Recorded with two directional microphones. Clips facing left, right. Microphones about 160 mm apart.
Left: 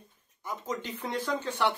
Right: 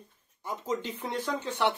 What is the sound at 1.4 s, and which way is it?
Speech, 20° right (ahead or behind).